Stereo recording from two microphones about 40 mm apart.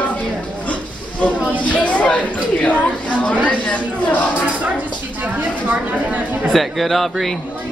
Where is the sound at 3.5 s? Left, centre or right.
Left.